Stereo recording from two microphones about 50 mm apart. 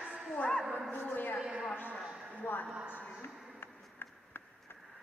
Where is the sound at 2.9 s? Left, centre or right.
Left.